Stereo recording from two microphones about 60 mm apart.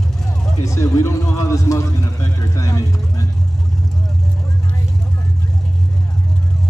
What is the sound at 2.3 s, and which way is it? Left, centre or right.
Vehicle, left.